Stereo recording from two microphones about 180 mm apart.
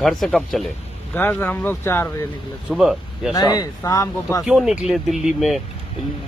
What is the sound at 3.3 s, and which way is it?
Speech, 20° left (ahead or behind).